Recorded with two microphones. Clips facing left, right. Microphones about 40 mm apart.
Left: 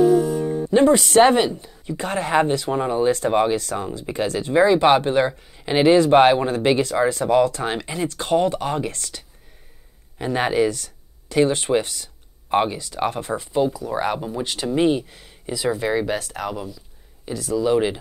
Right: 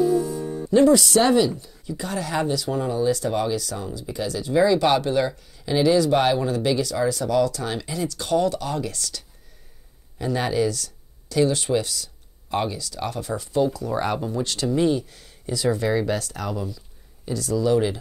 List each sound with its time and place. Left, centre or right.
0.0 s music: left
0.7 s speech: left
13.7 s speech: centre
14.8 s speech: left